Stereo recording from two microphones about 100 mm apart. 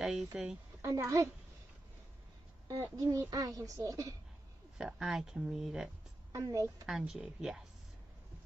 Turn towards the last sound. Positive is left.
turn(degrees=-5)  # may be behind; listen again after turning